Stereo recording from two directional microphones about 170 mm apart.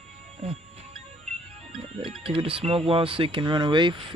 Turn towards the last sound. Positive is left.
turn(degrees=-30)  # may be behind; listen again after turning